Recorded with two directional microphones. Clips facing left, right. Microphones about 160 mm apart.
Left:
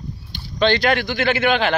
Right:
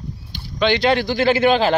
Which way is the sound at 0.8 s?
30° right (ahead or behind).